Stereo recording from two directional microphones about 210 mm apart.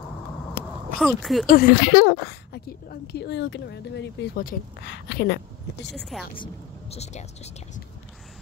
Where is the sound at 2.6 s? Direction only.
50° left (ahead or behind).